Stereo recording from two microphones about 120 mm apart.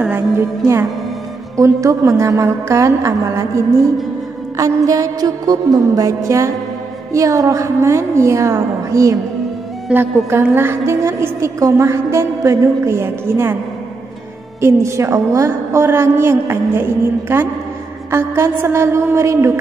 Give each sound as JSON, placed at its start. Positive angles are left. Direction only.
{"t": 0.4, "sound": "a woman's voice", "side_deg": -25}
{"t": 9.8, "sound": "a woman's voice", "side_deg": -15}
{"t": 14.6, "sound": "a woman's voice", "side_deg": -25}